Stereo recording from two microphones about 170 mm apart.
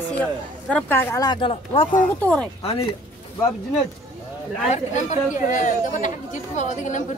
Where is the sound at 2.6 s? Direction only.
35° left (ahead or behind).